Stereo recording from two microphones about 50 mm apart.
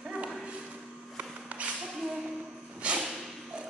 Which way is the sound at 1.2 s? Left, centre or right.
Right.